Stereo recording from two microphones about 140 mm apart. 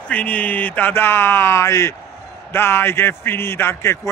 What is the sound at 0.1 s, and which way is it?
A man's voice, 10° left (ahead or behind).